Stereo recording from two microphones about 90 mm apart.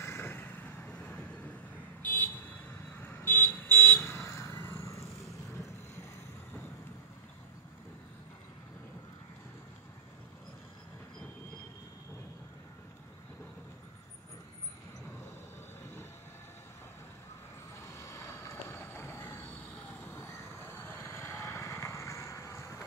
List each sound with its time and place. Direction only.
0.0 s vehicle: 25° left (ahead or behind)
17.7 s vehicle: 35° left (ahead or behind)